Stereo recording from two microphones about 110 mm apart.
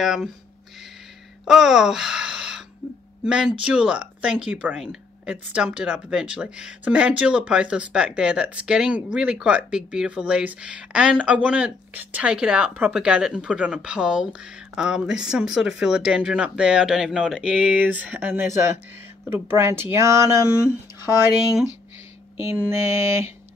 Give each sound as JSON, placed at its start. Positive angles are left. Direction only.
{"t": 0.0, "sound": "speech", "side_deg": -5}
{"t": 1.5, "sound": "a sound", "side_deg": -5}
{"t": 3.3, "sound": "speech", "side_deg": -5}
{"t": 22.4, "sound": "speech", "side_deg": -25}